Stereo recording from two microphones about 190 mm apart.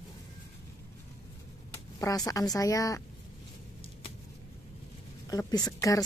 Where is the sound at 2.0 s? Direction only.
20° left (ahead or behind).